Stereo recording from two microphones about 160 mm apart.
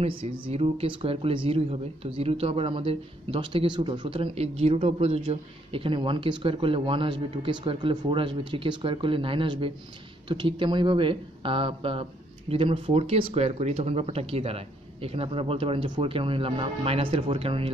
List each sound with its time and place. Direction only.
0.0 s speech: 35° right (ahead or behind)